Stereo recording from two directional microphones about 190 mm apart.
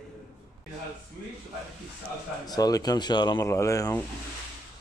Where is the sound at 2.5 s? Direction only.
20° left (ahead or behind).